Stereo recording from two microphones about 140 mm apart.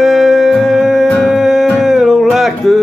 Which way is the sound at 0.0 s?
Centre (ahead or behind).